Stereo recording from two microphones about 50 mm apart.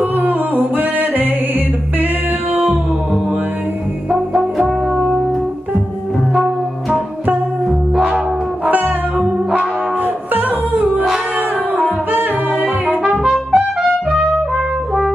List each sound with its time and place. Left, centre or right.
0.0 s yodeling: right
4.1 s brass instrument: centre
6.3 s music: centre
8.6 s music: right
10.7 s music: right
12.1 s music: right
13.0 s brass instrument: centre
13.3 s trumpet: centre